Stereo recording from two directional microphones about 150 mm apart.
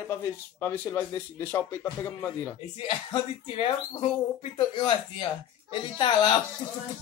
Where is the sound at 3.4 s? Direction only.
40° left (ahead or behind).